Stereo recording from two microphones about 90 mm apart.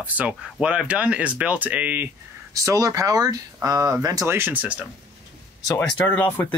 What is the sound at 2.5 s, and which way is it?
Speech, 40° right (ahead or behind).